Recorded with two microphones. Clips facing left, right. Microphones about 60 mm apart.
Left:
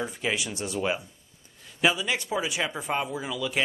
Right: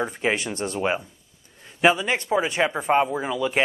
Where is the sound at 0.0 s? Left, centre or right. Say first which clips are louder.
Right 5 dB; right.